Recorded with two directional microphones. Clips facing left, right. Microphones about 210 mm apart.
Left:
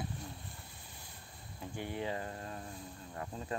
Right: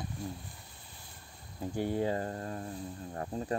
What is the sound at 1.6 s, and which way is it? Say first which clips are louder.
Cricket: right 8 dB; 40° right (ahead or behind).